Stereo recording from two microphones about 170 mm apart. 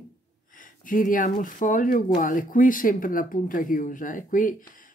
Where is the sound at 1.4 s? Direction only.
50° left (ahead or behind).